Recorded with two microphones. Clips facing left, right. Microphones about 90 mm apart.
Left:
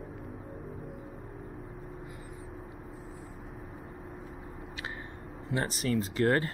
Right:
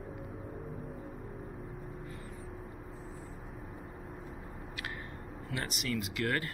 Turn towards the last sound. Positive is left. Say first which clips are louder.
# left 7 dB
turn(degrees=30)  # may be behind; listen again after turning